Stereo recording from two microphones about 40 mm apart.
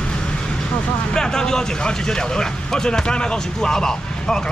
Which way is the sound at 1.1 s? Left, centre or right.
Centre.